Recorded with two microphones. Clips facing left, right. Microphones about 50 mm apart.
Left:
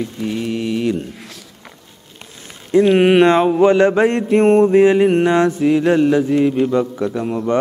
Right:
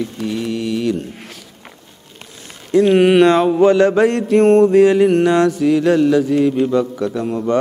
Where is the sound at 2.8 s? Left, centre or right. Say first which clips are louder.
Right 1 dB; centre.